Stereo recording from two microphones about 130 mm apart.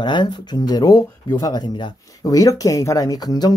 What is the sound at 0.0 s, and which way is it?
Speech, 35° left (ahead or behind).